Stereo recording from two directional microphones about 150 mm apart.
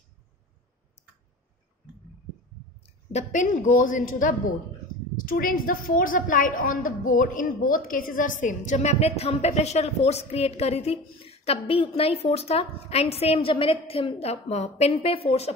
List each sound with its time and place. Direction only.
2.8 s a woman's voice: 50° left (ahead or behind)